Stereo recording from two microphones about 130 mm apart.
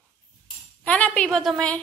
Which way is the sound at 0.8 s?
10° left (ahead or behind).